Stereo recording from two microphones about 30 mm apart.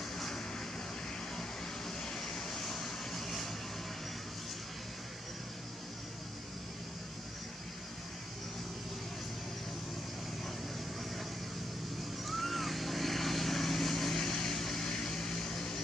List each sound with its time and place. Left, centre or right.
1.9 s vehicle: centre
12.3 s vehicle: centre